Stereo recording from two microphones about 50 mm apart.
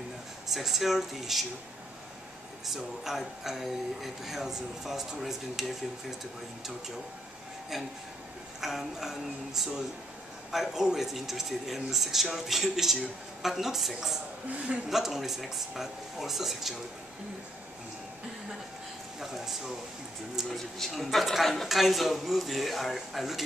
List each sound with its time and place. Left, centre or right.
0.5 s speech: centre
2.6 s speech: centre
7.7 s speech: centre
19.1 s speech: centre
20.4 s speech: centre